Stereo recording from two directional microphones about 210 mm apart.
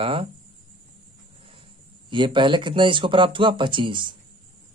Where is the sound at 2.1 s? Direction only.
25° right (ahead or behind).